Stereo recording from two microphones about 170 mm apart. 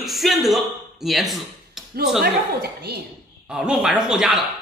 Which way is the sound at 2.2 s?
65° right (ahead or behind).